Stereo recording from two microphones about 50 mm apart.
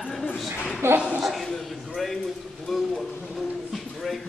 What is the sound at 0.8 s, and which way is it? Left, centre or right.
Speech, right.